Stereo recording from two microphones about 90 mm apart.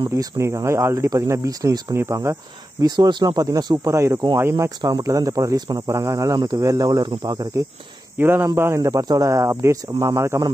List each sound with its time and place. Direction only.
0.1 s speech: 35° right (ahead or behind)
2.0 s speech: 30° right (ahead or behind)
2.8 s speech: 50° right (ahead or behind)
3.9 s speech: 35° right (ahead or behind)
4.6 s speech: 40° right (ahead or behind)
8.2 s speech: 25° right (ahead or behind)